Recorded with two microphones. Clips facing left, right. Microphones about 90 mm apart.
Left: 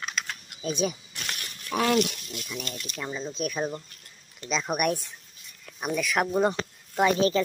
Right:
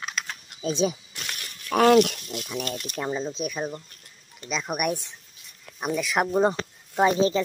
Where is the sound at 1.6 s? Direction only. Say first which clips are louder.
Right 7 dB; 55° right (ahead or behind).